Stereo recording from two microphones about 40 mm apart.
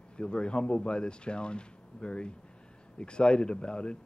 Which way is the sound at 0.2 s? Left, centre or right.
Left.